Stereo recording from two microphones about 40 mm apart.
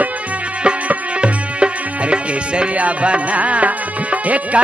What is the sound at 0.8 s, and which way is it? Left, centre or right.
Music, right.